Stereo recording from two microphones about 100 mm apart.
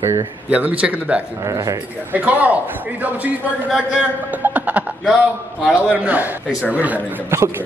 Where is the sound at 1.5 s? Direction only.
35° right (ahead or behind).